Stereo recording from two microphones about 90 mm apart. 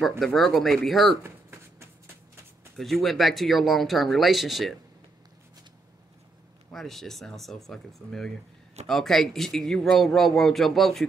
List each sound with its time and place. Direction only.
0.2 s speech: centre (ahead or behind)
1.2 s a sound: 25° right (ahead or behind)
2.8 s speech: centre (ahead or behind)
6.7 s speech: 5° left (ahead or behind)